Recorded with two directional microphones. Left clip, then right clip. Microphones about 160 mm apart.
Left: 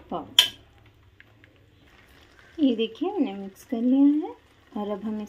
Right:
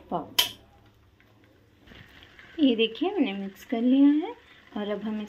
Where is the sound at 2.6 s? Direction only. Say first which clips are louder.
Right 1 dB; 10° left (ahead or behind).